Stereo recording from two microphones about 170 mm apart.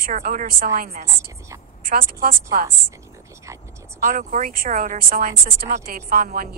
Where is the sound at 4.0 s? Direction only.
50° right (ahead or behind).